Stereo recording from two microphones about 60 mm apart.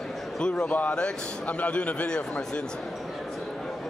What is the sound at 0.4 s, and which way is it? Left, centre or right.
A man's voice, centre.